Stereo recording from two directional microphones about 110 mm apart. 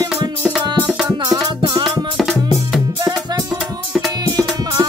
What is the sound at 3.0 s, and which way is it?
Music, 40° right (ahead or behind).